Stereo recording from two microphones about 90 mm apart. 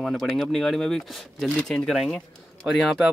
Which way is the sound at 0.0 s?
Centre (ahead or behind).